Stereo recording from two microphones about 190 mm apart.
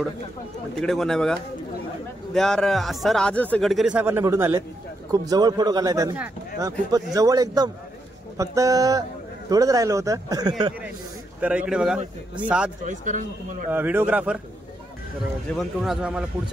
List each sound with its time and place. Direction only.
0.7 s a man's voice: centre (ahead or behind); by 6.1 s 20° right (ahead or behind)
7.2 s a man's voice: 20° right (ahead or behind)
11.4 s speech: 5° right (ahead or behind)
12.8 s a man's voice: 40° right (ahead or behind)
13.7 s a man's voice: 10° right (ahead or behind)
15.5 s speech: centre (ahead or behind)